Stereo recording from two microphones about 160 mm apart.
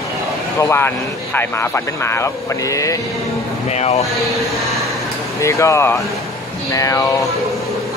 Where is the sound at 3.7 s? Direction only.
40° left (ahead or behind).